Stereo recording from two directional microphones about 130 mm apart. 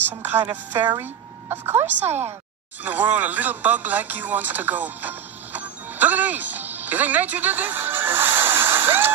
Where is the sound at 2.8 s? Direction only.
15° right (ahead or behind).